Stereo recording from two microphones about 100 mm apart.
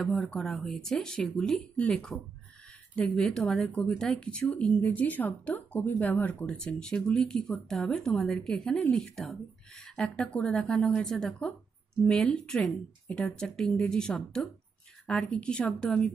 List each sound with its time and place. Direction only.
0.0 s speech: 5° left (ahead or behind)